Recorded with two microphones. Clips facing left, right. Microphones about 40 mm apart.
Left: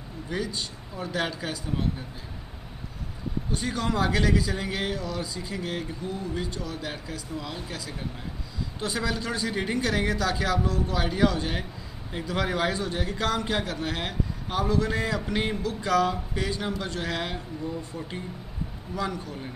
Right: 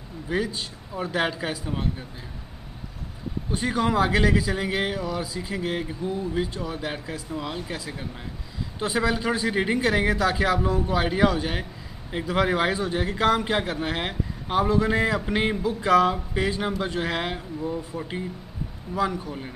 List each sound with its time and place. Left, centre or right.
0.3 s speech: centre
3.5 s a man's voice: centre